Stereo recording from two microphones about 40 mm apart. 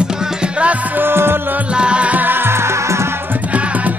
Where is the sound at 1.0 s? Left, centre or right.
Right.